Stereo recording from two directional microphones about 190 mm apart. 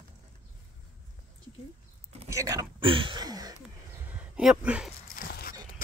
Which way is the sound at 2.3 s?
15° right (ahead or behind).